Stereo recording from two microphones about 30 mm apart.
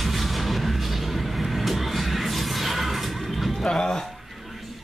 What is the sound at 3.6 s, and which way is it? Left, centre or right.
Speech, left.